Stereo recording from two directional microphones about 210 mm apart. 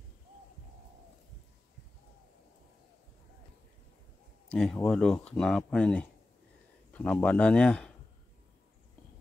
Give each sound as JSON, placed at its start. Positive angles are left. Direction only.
{"t": 4.5, "sound": "speech", "side_deg": 5}